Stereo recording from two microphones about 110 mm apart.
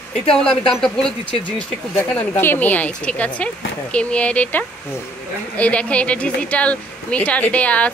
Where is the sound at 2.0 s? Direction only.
20° left (ahead or behind).